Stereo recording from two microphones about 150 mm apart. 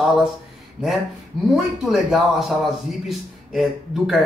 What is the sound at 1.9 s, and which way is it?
A man's voice, centre (ahead or behind).